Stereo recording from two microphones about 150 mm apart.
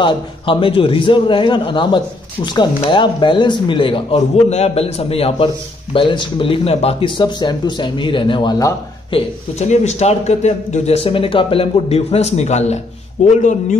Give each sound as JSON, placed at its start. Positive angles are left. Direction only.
{"t": 0.0, "sound": "speech", "side_deg": 35}
{"t": 9.1, "sound": "a man's voice", "side_deg": 50}